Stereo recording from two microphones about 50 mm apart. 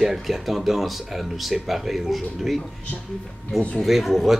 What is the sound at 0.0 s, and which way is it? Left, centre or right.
Speech, centre.